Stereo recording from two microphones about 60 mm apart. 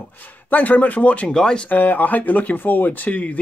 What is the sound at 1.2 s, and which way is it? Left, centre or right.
Speech, centre.